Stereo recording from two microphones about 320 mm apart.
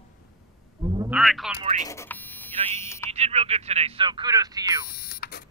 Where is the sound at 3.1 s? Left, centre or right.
Centre.